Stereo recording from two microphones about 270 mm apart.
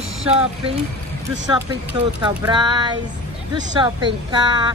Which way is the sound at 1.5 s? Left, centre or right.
Centre.